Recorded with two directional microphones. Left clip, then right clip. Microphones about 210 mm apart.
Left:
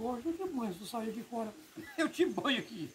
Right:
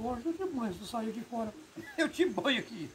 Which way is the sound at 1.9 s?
5° right (ahead or behind).